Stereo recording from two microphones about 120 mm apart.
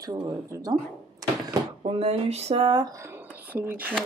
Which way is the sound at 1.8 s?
55° right (ahead or behind).